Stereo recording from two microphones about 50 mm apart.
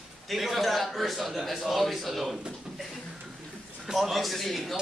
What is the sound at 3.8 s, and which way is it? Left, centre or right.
Speech, centre.